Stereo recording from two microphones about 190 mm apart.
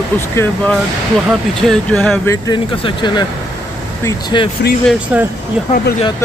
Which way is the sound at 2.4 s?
25° left (ahead or behind).